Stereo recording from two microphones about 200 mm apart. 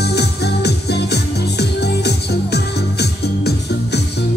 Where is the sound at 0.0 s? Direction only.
55° left (ahead or behind).